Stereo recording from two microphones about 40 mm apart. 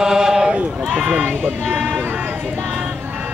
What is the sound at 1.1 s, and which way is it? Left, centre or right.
Speech, right.